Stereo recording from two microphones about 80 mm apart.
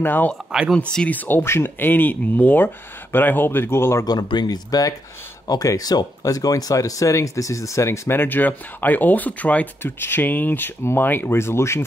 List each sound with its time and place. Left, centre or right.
0.0 s speech: left
0.5 s speech: centre
1.0 s speech: left
4.0 s speech: left